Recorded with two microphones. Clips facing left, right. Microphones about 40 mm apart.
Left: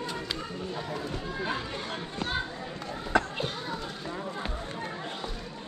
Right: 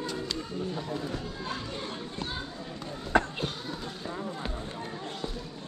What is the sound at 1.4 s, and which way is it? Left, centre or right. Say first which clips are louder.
Speech: left 3 dB; left.